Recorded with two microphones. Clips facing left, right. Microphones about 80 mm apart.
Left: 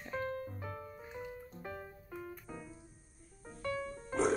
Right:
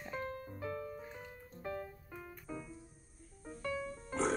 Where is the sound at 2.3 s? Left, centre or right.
Centre.